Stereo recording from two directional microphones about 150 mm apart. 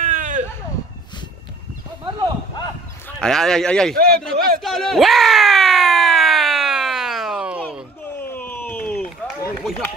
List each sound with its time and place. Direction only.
0.0 s a sound: 55° right (ahead or behind)
2.0 s clip-clop: 30° right (ahead or behind)
3.2 s speech: 5° left (ahead or behind)
3.9 s a man's voice: 90° right
4.2 s a sound: 5° left (ahead or behind)
8.2 s run: 15° left (ahead or behind)